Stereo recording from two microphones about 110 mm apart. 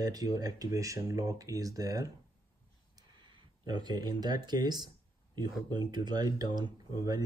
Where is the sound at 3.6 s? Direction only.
40° right (ahead or behind).